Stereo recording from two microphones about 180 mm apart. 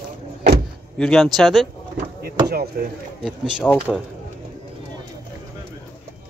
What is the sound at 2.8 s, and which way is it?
Speech, 55° right (ahead or behind).